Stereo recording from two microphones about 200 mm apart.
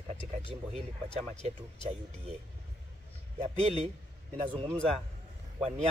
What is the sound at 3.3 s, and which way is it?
Speech, 30° right (ahead or behind).